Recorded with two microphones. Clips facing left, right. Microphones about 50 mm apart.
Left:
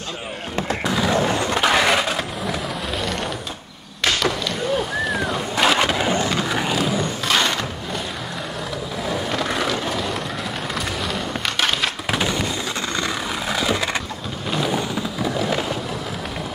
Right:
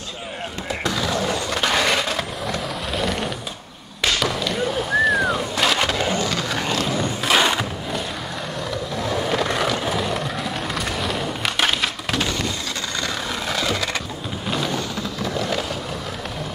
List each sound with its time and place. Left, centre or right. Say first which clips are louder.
0.8 s skateboard: left 2 dB; centre
1.1 s vehicle: left 3 dB; left; by 3.3 s centre
4.2 s a sound: even; centre
5.6 s skateboard: left 4 dB; centre
7.2 s a sound: right 3 dB; centre
9.0 s skateboard: right 2 dB; centre
12.1 s a sound: left 3 dB; centre
13.3 s vehicle: left 1 dB; centre
14.7 s fireworks: left 3 dB; centre